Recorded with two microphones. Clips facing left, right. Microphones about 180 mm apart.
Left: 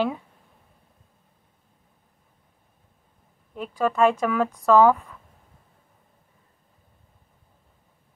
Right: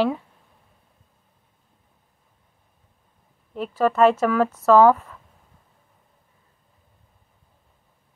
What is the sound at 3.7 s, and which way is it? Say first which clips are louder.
Speech: right 3 dB; 10° left (ahead or behind).